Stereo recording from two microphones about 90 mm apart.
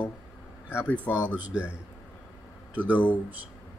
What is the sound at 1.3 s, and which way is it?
Speech, 10° right (ahead or behind).